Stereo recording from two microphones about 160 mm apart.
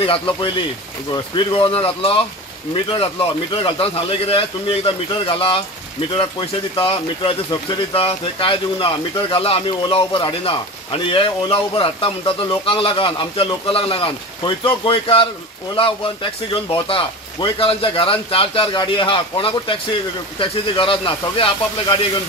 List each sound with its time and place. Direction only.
0.0 s speech: 35° left (ahead or behind)
6.7 s speech: 35° left (ahead or behind)